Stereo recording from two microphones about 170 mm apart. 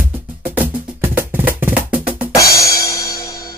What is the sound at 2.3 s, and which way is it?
Music, 20° left (ahead or behind).